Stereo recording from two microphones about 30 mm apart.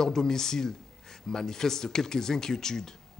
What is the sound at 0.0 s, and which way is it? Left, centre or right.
Speech, centre.